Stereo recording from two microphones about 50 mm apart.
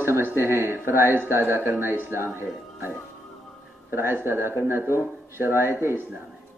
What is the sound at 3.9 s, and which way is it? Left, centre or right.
Speech, right.